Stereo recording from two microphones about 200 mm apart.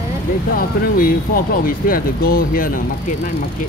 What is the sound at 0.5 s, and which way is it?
Speech, 45° left (ahead or behind).